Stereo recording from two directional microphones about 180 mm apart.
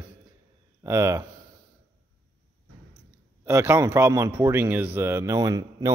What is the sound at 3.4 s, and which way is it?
Speech, 15° right (ahead or behind).